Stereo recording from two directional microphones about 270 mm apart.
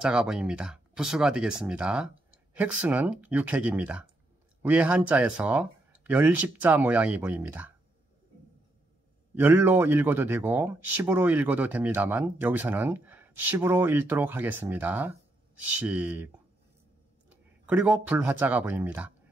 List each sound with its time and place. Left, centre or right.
0.0 s speech: centre
9.3 s speech: centre
17.3 s speech: centre